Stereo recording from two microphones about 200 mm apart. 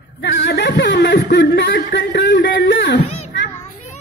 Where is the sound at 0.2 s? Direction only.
60° left (ahead or behind).